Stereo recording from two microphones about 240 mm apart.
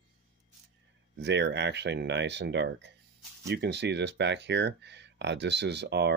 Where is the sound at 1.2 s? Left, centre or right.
Right.